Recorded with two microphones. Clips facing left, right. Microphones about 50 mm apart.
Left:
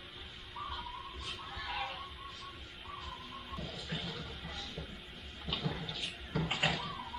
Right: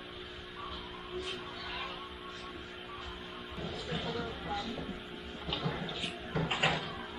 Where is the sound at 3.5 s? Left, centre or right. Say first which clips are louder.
Right 4 dB; centre.